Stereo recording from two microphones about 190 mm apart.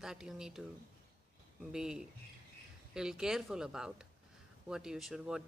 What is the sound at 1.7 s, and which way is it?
A man's voice, 5° right (ahead or behind).